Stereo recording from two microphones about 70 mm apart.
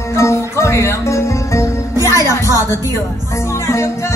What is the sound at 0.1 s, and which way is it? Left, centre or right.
Music, left.